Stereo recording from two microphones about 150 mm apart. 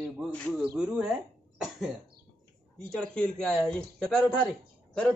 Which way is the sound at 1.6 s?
Centre (ahead or behind).